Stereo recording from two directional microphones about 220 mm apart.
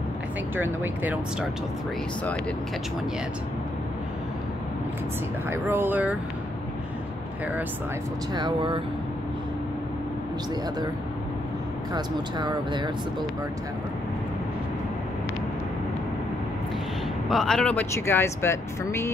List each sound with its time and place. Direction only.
0.6 s speech: 5° right (ahead or behind)
5.5 s speech: 10° right (ahead or behind)
8.4 s speech: 20° right (ahead or behind)
11.9 s speech: 20° right (ahead or behind)
17.3 s speech: centre (ahead or behind)